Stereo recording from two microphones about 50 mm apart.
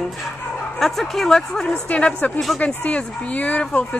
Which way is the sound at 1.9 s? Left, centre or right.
Left.